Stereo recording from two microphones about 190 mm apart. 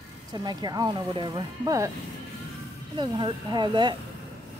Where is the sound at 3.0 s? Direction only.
25° right (ahead or behind).